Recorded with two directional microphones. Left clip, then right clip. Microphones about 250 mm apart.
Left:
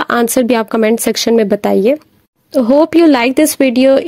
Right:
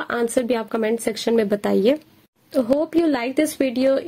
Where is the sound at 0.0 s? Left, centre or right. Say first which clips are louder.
Left 9 dB; left; by 2.0 s centre.